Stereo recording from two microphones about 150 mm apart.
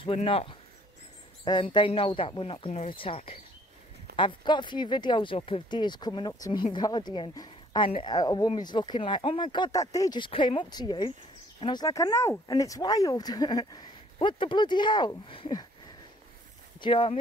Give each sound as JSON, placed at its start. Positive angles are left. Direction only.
{"t": 0.0, "sound": "speech", "side_deg": 40}
{"t": 16.8, "sound": "speech", "side_deg": 35}